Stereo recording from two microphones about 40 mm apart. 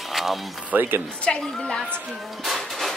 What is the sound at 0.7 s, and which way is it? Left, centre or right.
Speech, right.